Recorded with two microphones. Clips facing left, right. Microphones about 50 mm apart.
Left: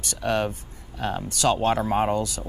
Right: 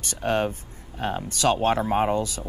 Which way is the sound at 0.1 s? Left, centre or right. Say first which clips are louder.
Right 1 dB; right.